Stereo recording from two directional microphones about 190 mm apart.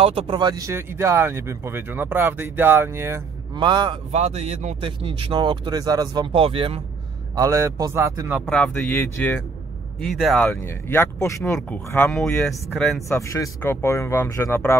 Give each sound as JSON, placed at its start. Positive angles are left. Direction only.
{"t": 0.0, "sound": "speech", "side_deg": -30}
{"t": 4.1, "sound": "speech", "side_deg": -35}
{"t": 7.3, "sound": "speech", "side_deg": -15}
{"t": 8.5, "sound": "speech", "side_deg": 5}
{"t": 9.9, "sound": "speech", "side_deg": 0}
{"t": 13.1, "sound": "speech", "side_deg": 15}